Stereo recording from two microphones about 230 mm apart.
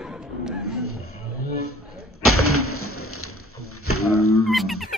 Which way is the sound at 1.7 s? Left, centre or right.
Left.